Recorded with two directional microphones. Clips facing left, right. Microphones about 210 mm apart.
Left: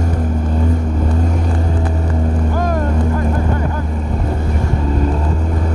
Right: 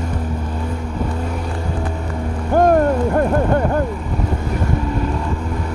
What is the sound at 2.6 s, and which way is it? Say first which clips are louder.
Vehicle: right 9 dB; 55° right (ahead or behind).